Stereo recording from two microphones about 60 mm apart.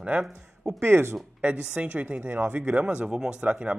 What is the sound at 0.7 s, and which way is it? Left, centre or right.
Speech, right.